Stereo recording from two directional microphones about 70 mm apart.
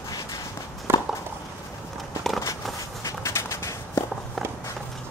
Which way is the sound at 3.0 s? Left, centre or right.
Left.